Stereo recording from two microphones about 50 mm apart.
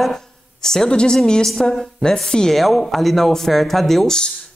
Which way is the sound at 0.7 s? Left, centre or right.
Centre.